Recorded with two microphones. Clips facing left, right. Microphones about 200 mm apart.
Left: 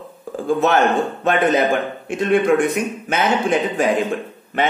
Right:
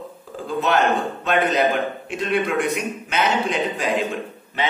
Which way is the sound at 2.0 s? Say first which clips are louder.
Left 10 dB; 50° left (ahead or behind).